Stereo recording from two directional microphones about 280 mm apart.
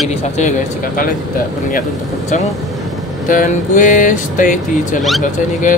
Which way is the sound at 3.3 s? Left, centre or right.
Left.